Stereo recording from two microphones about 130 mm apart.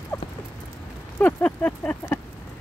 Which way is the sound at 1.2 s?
10° left (ahead or behind).